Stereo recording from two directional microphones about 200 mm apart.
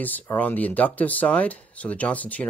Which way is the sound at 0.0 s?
10° left (ahead or behind).